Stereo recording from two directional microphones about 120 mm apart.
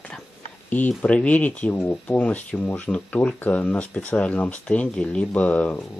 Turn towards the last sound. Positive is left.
turn(degrees=10)  # may be behind; listen again after turning